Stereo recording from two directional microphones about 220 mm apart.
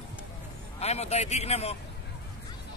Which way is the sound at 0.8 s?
30° left (ahead or behind).